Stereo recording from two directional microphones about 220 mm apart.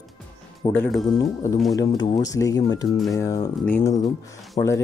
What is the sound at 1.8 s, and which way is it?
Speech, 20° left (ahead or behind).